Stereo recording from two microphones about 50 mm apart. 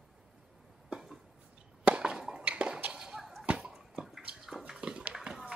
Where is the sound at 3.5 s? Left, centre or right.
Right.